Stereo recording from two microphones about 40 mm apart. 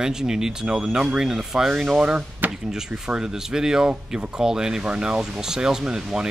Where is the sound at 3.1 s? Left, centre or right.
Centre.